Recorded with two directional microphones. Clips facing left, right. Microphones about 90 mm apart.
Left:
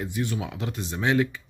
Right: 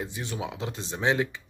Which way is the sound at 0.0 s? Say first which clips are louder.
Left 4 dB; 25° right (ahead or behind).